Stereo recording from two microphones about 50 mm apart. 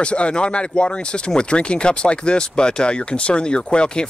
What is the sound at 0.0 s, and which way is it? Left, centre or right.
Speech, left.